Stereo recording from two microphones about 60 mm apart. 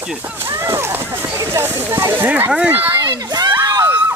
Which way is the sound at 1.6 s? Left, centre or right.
Right.